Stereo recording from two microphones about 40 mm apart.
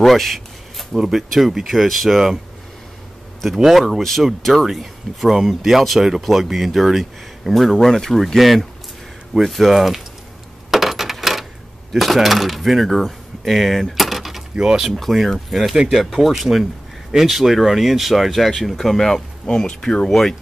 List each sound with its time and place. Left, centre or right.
0.0 s a sound: centre
0.9 s speech: centre
3.5 s speech: centre
4.4 s speech: centre
4.6 s speech: centre
9.4 s speech: centre
10.7 s coin: centre
11.9 s speech: centre
14.6 s speech: centre
15.0 s speech: centre